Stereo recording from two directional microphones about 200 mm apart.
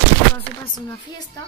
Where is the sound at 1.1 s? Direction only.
20° left (ahead or behind).